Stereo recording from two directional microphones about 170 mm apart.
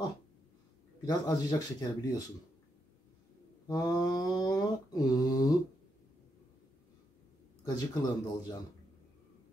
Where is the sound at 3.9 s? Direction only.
20° left (ahead or behind).